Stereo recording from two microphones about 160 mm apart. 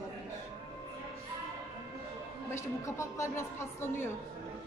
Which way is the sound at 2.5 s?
15° left (ahead or behind).